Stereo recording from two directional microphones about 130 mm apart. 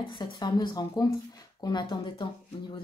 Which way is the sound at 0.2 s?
35° left (ahead or behind).